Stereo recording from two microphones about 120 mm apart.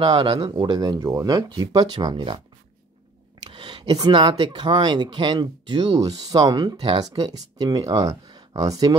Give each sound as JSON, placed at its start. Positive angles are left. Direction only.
{"t": 0.0, "sound": "speech", "side_deg": -45}
{"t": 3.4, "sound": "speech", "side_deg": -45}